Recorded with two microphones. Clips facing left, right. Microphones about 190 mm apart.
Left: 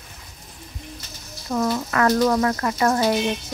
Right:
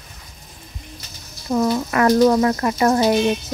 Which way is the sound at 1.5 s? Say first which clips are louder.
Right 4 dB; 15° right (ahead or behind).